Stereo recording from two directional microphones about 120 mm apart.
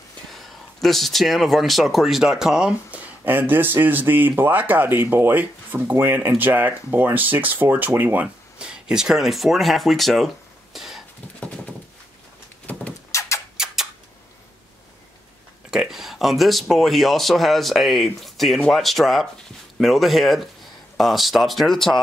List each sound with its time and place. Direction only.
0.3 s speech: centre (ahead or behind)
12.7 s vehicle: 15° left (ahead or behind)
13.1 s a sound: 25° left (ahead or behind)
15.7 s speech: 5° right (ahead or behind)